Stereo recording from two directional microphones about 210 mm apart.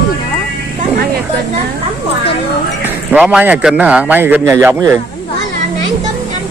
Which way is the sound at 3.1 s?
5° right (ahead or behind).